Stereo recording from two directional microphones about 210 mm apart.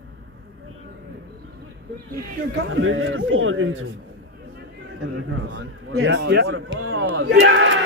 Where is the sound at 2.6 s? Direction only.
65° right (ahead or behind).